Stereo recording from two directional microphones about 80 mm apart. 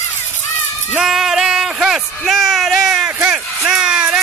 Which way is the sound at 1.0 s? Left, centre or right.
Centre.